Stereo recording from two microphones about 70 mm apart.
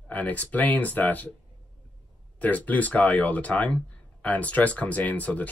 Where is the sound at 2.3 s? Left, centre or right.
Left.